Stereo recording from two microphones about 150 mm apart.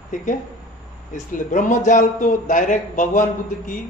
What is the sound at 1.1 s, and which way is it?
A man's voice, 60° left (ahead or behind).